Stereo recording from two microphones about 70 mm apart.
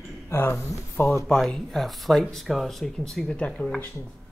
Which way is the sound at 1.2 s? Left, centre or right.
Centre.